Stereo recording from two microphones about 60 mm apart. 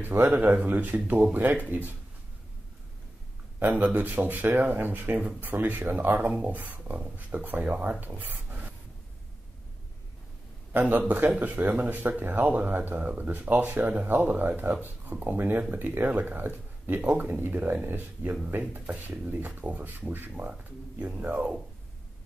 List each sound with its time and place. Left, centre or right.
0.0 s speech: right
3.7 s speech: right
10.7 s speech: right